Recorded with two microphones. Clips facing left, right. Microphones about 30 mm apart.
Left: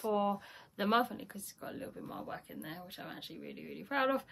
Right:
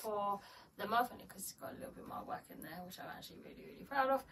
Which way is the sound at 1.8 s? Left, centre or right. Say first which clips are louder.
Left 3 dB; left.